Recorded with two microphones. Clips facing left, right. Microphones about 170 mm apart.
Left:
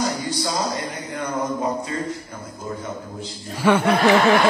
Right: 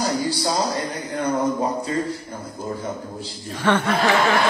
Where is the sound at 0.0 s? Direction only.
35° right (ahead or behind).